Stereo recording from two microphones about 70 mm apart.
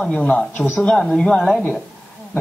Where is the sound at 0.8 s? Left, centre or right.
Centre.